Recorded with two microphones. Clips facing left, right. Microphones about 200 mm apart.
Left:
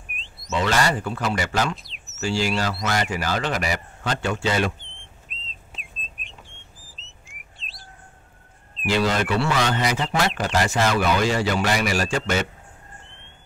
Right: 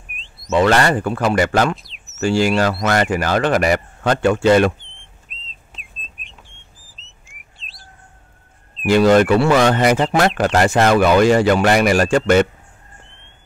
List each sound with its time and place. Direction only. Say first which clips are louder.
0.1 s a sound: even; centre (ahead or behind)
0.6 s speech: right 7 dB; 60° right (ahead or behind)
1.8 s a sound: even; centre (ahead or behind)
2.1 s speech: right 8 dB; 55° right (ahead or behind)
4.7 s whistle: left 1 dB; centre (ahead or behind)
8.8 s speech: right 10 dB; 50° right (ahead or behind)